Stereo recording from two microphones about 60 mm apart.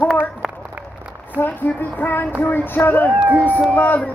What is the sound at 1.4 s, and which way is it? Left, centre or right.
Music, left.